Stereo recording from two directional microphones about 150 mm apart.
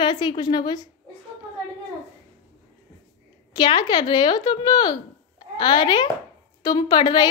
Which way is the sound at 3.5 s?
30° left (ahead or behind).